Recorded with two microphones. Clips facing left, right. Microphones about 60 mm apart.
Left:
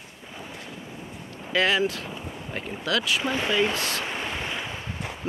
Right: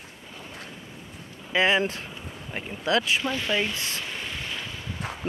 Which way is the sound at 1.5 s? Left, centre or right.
Right.